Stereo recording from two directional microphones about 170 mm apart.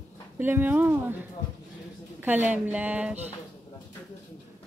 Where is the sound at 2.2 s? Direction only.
10° right (ahead or behind).